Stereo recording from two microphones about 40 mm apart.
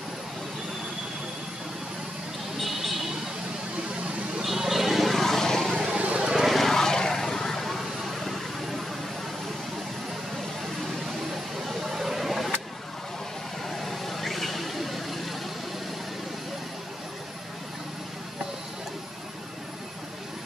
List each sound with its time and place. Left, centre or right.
2.5 s vehicle: centre
4.4 s vehicle: centre
5.9 s vehicle: right
6.4 s vehicle: centre
11.9 s vehicle: centre
13.7 s vehicle: centre